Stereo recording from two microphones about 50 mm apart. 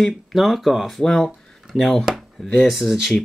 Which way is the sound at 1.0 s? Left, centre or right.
Centre.